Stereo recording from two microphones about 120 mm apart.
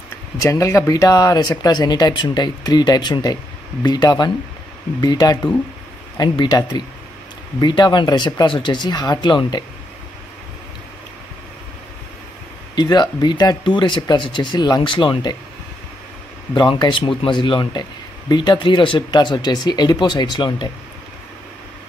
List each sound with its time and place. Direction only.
0.4 s speech: 25° left (ahead or behind)
12.7 s speech: 35° left (ahead or behind)
16.5 s speech: 40° left (ahead or behind)